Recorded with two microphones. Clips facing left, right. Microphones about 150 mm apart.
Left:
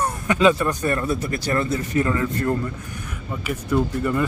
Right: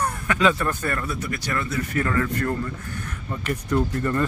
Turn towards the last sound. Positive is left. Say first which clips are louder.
# left 2 dB
turn(degrees=10)  # may be behind; listen again after turning